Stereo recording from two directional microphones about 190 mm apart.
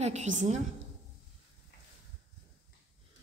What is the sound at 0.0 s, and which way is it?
Speech, 35° right (ahead or behind).